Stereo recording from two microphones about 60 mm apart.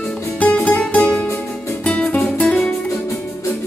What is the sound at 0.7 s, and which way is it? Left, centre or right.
Music, left.